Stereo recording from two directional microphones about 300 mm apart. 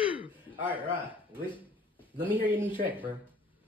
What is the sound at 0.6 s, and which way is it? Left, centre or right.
Speech, centre.